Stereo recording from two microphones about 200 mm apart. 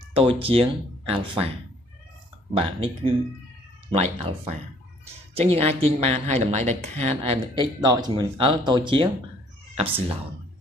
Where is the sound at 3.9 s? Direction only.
30° right (ahead or behind).